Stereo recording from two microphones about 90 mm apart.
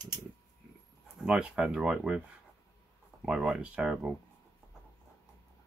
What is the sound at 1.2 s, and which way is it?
Speech, 10° right (ahead or behind).